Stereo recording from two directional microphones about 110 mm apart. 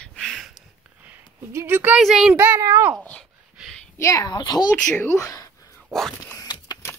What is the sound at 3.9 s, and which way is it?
Speech, 30° left (ahead or behind).